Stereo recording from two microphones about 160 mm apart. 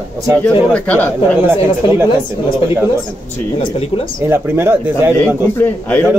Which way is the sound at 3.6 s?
35° left (ahead or behind).